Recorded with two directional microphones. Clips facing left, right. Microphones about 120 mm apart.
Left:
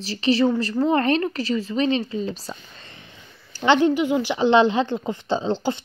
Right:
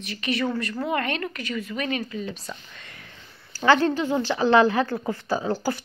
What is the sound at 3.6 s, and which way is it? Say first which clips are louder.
A woman's voice: left 2 dB; 20° left (ahead or behind).